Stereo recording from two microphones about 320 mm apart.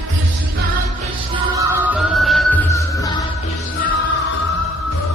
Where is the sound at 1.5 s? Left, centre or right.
Centre.